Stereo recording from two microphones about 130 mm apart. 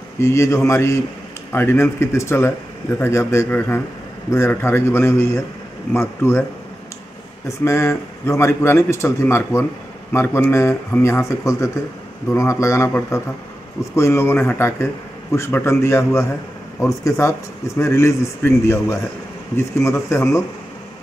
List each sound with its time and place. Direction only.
0.2 s speech: 20° left (ahead or behind)
7.4 s speech: 20° left (ahead or behind)